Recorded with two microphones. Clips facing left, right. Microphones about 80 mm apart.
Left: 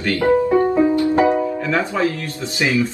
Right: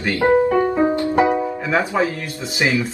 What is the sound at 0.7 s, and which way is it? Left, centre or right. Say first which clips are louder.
Music: left 2 dB; right.